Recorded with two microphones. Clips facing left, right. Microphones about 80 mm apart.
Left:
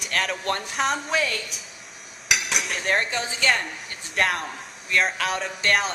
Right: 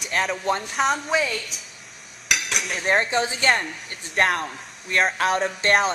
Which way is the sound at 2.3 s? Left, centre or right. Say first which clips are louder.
Even; centre.